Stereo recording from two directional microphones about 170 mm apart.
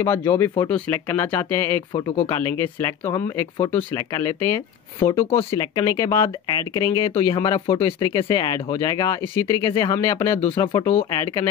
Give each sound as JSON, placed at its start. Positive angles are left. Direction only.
{"t": 0.0, "sound": "speech", "side_deg": 15}
{"t": 10.6, "sound": "speech", "side_deg": 30}